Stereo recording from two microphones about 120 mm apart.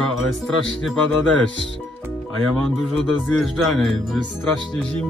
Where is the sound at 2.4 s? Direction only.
Centre (ahead or behind).